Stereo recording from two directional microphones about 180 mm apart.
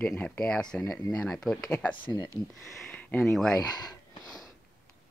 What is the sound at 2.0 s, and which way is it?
Speech, 25° left (ahead or behind).